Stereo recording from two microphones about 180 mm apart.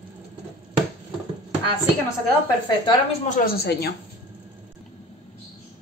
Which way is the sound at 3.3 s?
55° left (ahead or behind).